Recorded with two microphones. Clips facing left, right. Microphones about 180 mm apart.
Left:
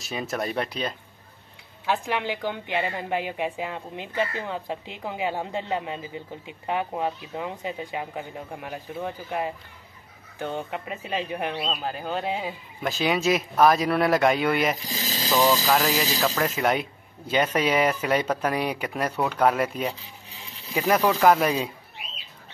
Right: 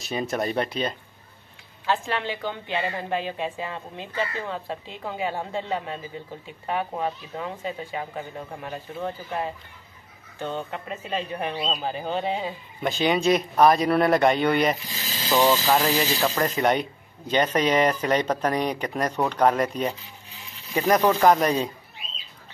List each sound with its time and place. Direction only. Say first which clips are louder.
0.0 s speech: right 3 dB; centre (ahead or behind)
1.9 s a woman's voice: even; 15° left (ahead or behind)
14.9 s speech: left 4 dB; 40° left (ahead or behind)
15.4 s a woman's voice: right 1 dB; centre (ahead or behind)